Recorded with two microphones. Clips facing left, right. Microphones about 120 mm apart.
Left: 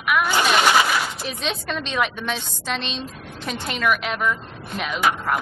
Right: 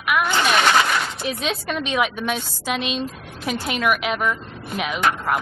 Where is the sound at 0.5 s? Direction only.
10° left (ahead or behind).